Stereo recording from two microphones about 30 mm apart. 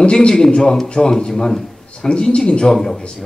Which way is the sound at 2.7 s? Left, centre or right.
Centre.